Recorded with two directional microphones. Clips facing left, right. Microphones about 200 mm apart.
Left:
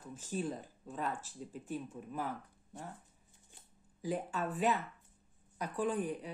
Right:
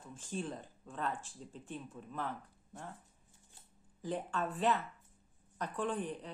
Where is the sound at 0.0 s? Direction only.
10° left (ahead or behind).